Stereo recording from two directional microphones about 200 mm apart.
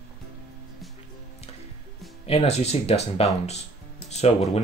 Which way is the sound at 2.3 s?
30° left (ahead or behind).